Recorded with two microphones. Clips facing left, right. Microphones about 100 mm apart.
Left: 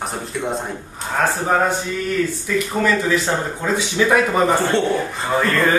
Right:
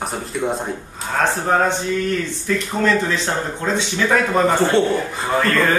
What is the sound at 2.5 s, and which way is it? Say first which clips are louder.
Speech: left 1 dB; 5° left (ahead or behind).